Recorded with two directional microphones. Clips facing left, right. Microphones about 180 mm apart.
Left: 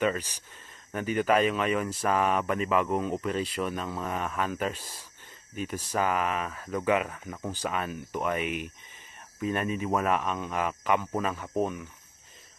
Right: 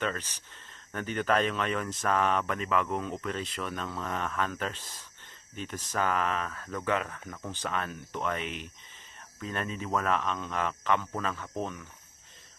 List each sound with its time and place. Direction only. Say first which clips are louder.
0.0 s speech: left 6 dB; 10° left (ahead or behind)